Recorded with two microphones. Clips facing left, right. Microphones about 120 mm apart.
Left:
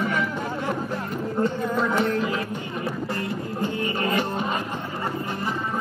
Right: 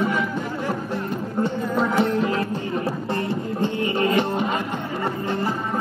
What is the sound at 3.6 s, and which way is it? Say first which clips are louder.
Music: right 4 dB; 25° right (ahead or behind).